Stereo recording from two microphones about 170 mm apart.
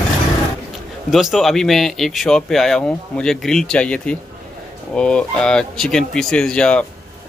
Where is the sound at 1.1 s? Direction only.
Centre (ahead or behind).